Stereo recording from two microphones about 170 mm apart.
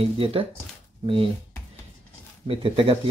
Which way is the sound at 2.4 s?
35° right (ahead or behind).